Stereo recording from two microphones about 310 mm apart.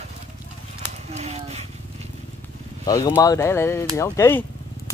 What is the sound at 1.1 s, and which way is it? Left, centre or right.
Speech, centre.